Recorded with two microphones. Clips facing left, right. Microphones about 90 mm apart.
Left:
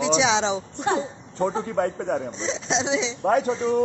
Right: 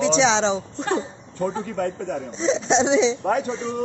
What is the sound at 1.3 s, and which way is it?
Speech, 30° left (ahead or behind).